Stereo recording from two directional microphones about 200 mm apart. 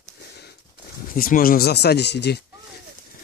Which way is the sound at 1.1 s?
45° left (ahead or behind).